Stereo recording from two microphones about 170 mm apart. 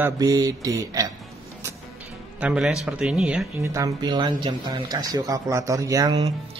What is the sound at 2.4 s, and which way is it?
A man's voice, 5° right (ahead or behind).